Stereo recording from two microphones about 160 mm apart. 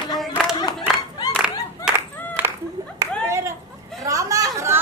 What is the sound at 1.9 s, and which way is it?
Clapping, 5° right (ahead or behind).